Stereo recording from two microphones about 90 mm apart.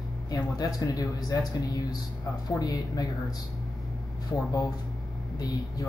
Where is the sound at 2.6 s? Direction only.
40° left (ahead or behind).